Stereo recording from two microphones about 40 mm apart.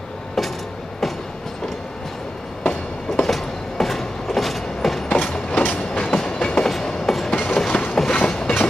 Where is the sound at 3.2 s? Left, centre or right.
Centre.